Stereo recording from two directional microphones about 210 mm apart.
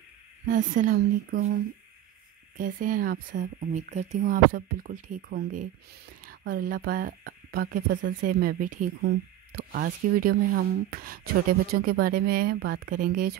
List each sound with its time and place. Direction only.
0.5 s speech: 40° right (ahead or behind)
2.5 s speech: 40° right (ahead or behind)